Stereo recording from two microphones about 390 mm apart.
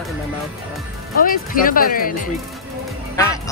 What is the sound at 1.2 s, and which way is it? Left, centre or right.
Speech, left.